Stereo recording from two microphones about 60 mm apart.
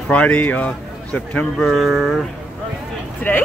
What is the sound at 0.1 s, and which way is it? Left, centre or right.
A man's voice, left.